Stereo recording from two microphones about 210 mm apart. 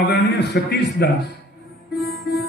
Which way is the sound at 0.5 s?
50° left (ahead or behind).